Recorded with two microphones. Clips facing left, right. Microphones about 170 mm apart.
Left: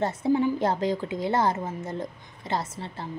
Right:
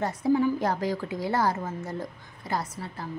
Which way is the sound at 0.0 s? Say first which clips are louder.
Even; 25° left (ahead or behind).